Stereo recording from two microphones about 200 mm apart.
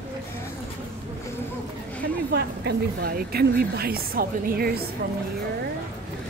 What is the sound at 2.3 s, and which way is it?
A woman's voice, 55° right (ahead or behind).